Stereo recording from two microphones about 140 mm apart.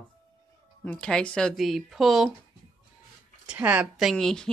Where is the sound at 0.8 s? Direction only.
10° left (ahead or behind).